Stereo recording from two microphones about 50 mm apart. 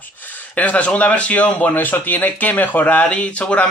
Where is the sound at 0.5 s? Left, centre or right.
Left.